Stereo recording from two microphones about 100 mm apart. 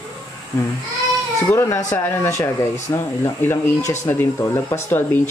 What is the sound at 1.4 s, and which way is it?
Speech, 30° left (ahead or behind).